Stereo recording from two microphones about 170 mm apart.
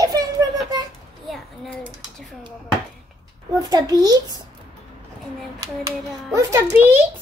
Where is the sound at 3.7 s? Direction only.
20° right (ahead or behind).